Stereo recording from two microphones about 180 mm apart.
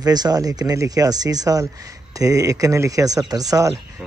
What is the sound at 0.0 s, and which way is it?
Speech, 20° right (ahead or behind).